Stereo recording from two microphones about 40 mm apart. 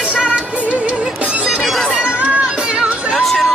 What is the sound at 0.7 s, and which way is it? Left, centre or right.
Music, right.